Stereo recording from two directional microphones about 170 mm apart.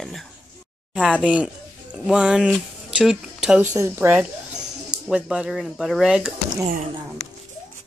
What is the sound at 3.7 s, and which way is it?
Speech, 15° right (ahead or behind).